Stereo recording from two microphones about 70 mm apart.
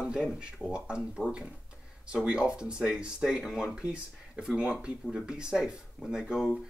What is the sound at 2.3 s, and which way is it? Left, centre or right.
Speech, centre.